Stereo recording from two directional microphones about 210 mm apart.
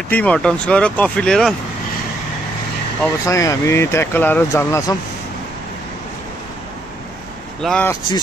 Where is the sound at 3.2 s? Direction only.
15° left (ahead or behind).